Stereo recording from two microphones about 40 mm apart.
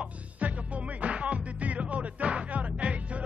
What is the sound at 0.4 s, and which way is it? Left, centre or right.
Music, right.